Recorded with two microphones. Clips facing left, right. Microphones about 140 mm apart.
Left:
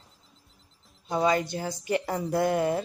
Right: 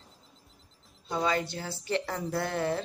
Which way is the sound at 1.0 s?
15° left (ahead or behind).